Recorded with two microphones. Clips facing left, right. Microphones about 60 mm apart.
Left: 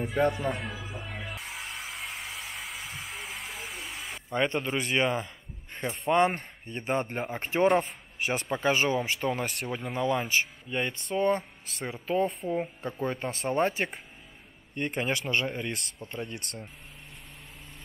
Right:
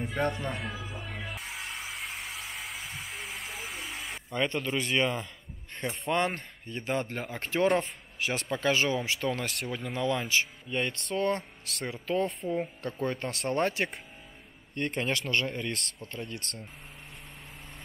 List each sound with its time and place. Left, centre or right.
0.0 s music: centre
4.3 s speech: left